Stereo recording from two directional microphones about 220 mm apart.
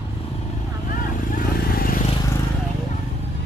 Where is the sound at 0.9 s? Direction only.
40° left (ahead or behind).